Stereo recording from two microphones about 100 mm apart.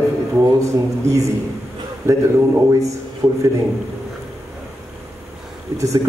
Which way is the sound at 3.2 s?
20° right (ahead or behind).